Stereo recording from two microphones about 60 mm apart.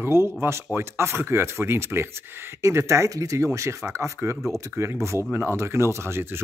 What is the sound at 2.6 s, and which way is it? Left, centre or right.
Speech, right.